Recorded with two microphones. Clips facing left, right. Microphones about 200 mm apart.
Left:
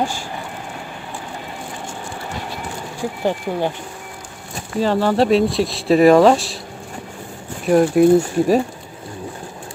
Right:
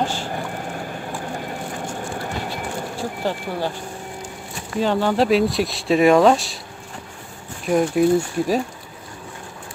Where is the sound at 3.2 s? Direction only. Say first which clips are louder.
Left 5 dB; 15° left (ahead or behind).